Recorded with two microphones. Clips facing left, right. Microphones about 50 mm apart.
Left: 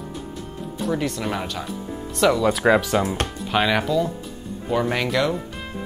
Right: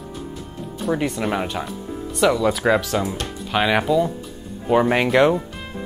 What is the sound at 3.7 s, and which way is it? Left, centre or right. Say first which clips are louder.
Speech: right 3 dB; centre.